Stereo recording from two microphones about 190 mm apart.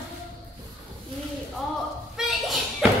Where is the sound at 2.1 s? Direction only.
Centre (ahead or behind).